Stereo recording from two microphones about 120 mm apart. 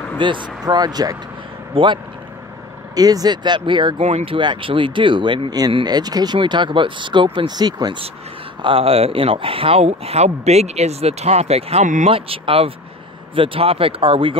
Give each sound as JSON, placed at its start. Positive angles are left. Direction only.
{"t": 0.2, "sound": "speech", "side_deg": -40}
{"t": 1.7, "sound": "speech", "side_deg": -45}
{"t": 3.0, "sound": "speech", "side_deg": -30}
{"t": 4.0, "sound": "speech", "side_deg": -60}
{"t": 4.4, "sound": "speech", "side_deg": -45}
{"t": 8.6, "sound": "speech", "side_deg": -55}
{"t": 12.1, "sound": "speech", "side_deg": -50}